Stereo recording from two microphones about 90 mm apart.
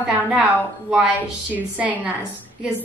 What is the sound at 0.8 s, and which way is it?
A woman's voice, 10° right (ahead or behind).